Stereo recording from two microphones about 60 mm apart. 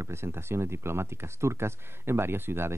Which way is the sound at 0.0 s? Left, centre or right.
Right.